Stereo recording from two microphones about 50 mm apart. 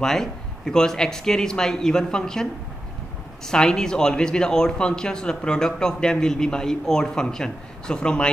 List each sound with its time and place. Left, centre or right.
0.0 s speech: centre
3.4 s speech: centre